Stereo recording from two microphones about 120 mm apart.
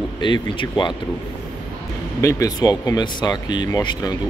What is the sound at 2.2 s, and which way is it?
Speech, 30° left (ahead or behind).